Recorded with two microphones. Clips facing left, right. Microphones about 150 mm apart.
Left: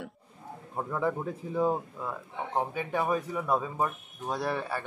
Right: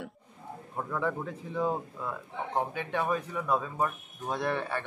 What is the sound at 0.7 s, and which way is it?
Speech, 15° left (ahead or behind).